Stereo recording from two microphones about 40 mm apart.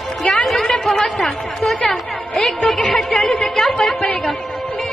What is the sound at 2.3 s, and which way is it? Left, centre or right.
Music, left.